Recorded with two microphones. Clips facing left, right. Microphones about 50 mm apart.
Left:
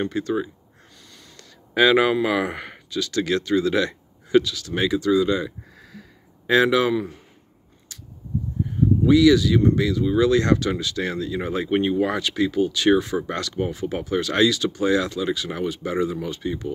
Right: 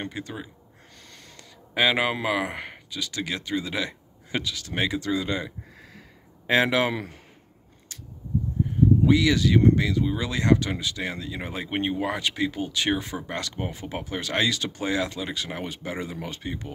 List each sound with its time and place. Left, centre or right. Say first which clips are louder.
0.2 s speech: left 9 dB; centre
1.8 s speech: left 6 dB; centre
4.4 s speech: left 7 dB; right
5.9 s a sound: left 4 dB; right
9.0 s speech: left 5 dB; right
9.8 s speech: left 6 dB; right